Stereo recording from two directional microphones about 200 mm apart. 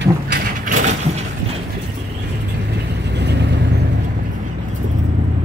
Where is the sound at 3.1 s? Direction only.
60° right (ahead or behind).